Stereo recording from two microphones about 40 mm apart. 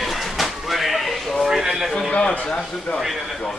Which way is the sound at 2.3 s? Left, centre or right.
Left.